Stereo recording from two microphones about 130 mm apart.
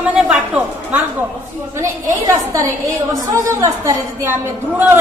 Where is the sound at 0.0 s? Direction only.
10° right (ahead or behind).